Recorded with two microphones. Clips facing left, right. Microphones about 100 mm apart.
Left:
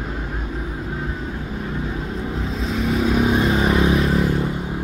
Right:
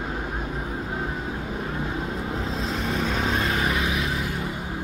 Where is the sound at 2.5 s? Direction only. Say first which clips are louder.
Left 7 dB; centre (ahead or behind); by 4.3 s 35° left (ahead or behind).